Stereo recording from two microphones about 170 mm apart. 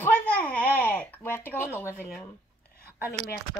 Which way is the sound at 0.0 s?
10° left (ahead or behind).